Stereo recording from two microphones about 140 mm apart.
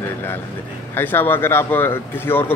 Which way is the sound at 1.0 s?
15° left (ahead or behind).